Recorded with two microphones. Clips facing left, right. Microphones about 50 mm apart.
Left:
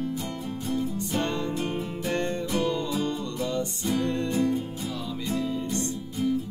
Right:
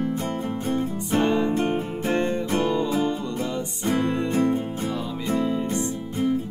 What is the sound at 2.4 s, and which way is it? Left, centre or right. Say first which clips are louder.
Music: right 4 dB; right.